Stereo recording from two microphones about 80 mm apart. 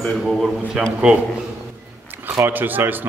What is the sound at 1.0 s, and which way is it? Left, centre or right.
Speech, centre.